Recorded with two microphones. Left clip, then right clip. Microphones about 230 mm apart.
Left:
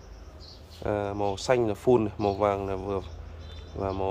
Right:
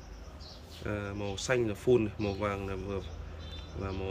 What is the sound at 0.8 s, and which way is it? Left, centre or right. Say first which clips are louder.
Speech: left 9 dB; centre.